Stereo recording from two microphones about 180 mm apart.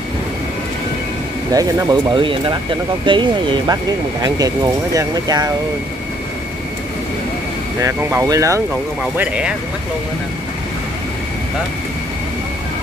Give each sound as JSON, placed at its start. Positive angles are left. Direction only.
{"t": 1.5, "sound": "speech", "side_deg": -20}
{"t": 7.8, "sound": "speech", "side_deg": -15}